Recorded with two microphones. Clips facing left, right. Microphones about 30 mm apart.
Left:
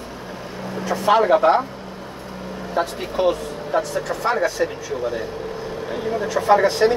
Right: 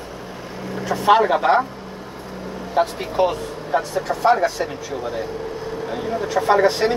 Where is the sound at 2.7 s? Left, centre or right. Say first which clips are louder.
Right 3 dB; centre.